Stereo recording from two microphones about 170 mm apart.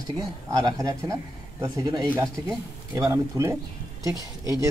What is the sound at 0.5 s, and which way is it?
A man's voice, 20° right (ahead or behind).